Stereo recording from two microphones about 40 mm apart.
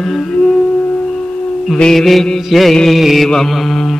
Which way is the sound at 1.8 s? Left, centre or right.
Centre.